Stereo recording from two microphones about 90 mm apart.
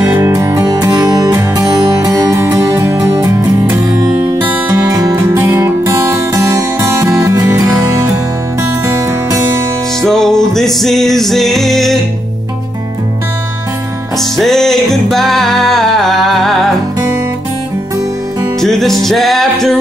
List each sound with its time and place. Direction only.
0.3 s music: 40° right (ahead or behind)
3.9 s music: 45° right (ahead or behind)
4.9 s music: 35° right (ahead or behind)
10.0 s music: 5° left (ahead or behind)
14.1 s music: 5° left (ahead or behind)
18.6 s music: 5° left (ahead or behind)